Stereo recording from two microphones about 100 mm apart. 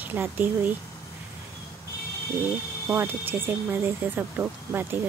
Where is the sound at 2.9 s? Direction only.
20° right (ahead or behind).